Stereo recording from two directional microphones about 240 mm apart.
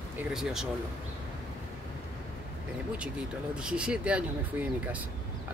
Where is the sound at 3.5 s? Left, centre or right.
Centre.